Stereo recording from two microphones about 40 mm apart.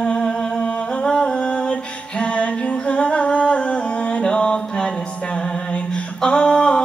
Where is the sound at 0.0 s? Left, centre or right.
Centre.